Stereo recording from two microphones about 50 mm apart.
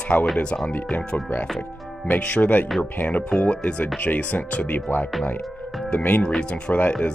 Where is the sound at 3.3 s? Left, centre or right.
Left.